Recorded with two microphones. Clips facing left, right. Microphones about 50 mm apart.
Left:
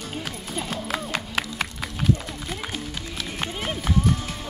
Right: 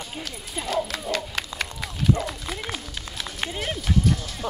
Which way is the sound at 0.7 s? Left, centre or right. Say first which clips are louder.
Right 6 dB; centre.